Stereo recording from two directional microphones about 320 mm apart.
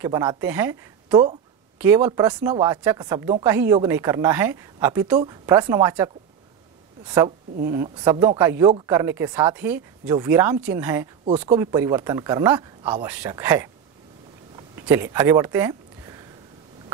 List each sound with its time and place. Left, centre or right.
0.0 s speech: centre
7.2 s speech: centre
11.2 s speech: centre
11.6 s speech: centre
14.9 s speech: centre